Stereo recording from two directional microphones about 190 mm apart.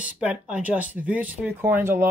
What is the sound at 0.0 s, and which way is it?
Speech, 5° right (ahead or behind).